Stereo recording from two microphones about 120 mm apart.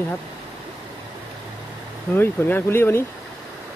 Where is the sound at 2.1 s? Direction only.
15° left (ahead or behind).